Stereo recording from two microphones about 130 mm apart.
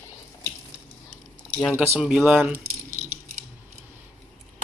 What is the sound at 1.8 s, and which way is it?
Speech, 15° right (ahead or behind).